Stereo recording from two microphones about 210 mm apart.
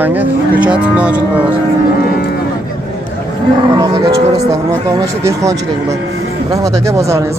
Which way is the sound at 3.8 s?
20° right (ahead or behind).